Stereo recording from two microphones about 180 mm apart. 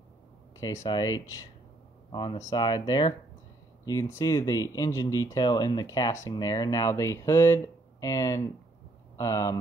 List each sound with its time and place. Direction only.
0.8 s speech: 20° left (ahead or behind)
2.5 s speech: 25° left (ahead or behind)